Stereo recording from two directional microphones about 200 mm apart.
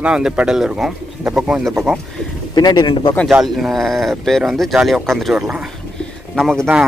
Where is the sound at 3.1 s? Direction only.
Centre (ahead or behind).